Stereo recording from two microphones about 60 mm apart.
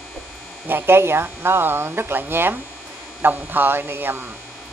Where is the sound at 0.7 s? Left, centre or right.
Right.